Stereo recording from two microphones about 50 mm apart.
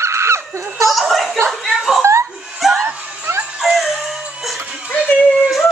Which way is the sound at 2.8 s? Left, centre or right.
Right.